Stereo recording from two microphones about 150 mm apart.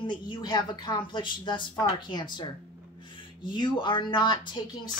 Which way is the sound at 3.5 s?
30° left (ahead or behind).